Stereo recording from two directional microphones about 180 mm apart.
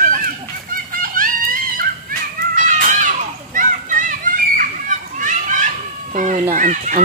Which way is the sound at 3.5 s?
45° right (ahead or behind).